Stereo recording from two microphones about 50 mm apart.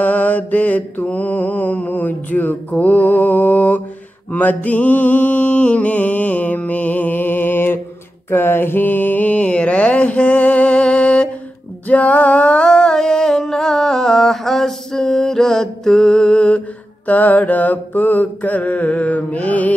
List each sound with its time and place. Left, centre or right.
0.0 s mantra: left
11.9 s music: left